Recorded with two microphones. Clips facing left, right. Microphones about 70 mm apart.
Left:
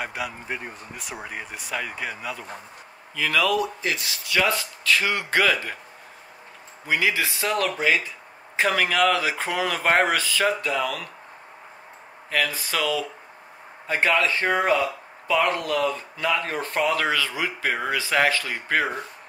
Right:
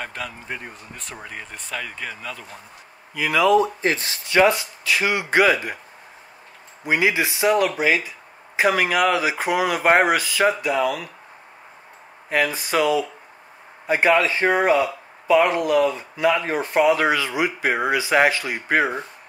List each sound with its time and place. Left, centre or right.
0.0 s speech: centre
3.2 s speech: centre
6.9 s speech: right
12.3 s speech: right